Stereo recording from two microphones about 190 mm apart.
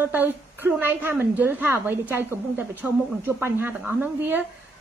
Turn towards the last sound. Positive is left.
turn(degrees=-10)  # may be behind; listen again after turning